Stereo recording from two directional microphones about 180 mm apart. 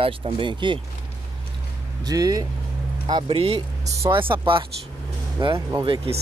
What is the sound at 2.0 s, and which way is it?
Speech, 20° right (ahead or behind).